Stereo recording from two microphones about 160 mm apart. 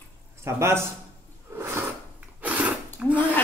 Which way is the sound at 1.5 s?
15° right (ahead or behind).